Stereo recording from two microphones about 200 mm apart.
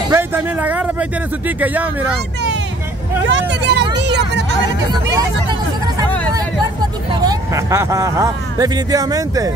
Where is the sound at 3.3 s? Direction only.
60° right (ahead or behind).